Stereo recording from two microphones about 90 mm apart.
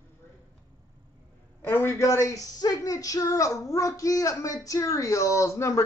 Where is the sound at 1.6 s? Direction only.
25° left (ahead or behind).